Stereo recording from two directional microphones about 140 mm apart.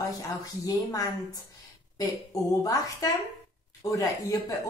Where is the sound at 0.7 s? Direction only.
25° left (ahead or behind).